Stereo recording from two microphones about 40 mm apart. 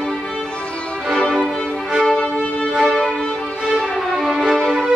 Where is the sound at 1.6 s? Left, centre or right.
Centre.